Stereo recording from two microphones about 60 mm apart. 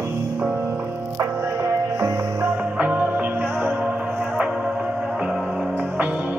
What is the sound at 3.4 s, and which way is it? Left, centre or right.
Music, right.